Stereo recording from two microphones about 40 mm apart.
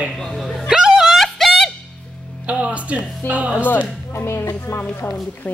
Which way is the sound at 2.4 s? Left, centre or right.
Right.